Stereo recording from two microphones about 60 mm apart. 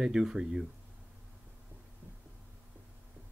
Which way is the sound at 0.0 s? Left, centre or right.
Centre.